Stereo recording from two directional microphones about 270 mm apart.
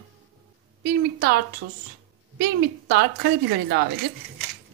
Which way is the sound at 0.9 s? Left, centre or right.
Right.